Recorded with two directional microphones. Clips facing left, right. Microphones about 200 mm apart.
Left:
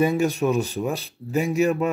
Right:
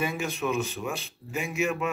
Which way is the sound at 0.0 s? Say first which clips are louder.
Left 9 dB; 40° left (ahead or behind).